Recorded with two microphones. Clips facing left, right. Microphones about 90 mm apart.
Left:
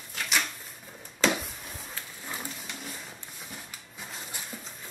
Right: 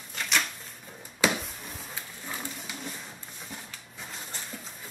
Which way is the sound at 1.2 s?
10° right (ahead or behind).